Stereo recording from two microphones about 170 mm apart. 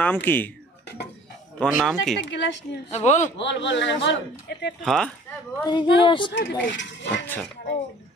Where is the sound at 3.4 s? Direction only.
90° left.